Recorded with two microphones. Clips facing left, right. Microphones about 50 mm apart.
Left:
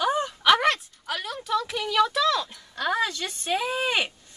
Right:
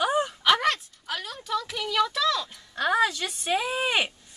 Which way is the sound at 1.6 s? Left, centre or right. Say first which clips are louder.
Left 2 dB; centre.